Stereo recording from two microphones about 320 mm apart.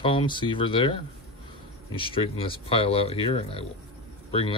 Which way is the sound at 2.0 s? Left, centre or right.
Centre.